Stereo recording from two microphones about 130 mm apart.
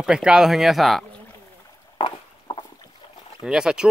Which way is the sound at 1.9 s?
40° left (ahead or behind).